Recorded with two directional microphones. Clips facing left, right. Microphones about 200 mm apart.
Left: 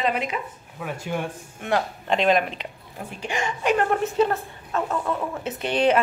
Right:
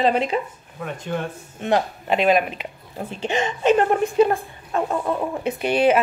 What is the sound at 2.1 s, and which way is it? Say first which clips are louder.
Speech: right 2 dB; 5° right (ahead or behind).